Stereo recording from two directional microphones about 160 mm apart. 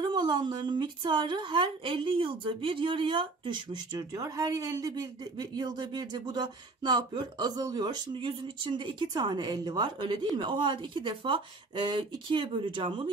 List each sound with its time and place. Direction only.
0.0 s a woman's voice: 25° right (ahead or behind)